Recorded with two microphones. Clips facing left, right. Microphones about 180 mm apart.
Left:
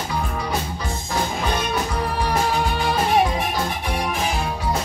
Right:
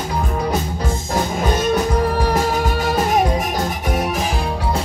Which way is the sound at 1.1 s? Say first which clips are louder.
Right 3 dB; 45° right (ahead or behind).